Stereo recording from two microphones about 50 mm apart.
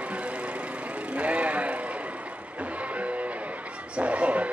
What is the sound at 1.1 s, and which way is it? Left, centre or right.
Vehicle, right.